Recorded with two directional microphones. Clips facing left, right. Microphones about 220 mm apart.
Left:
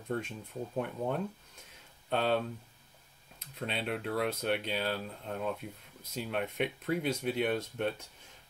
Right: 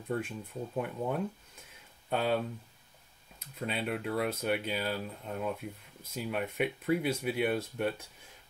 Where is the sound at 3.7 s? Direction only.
5° right (ahead or behind).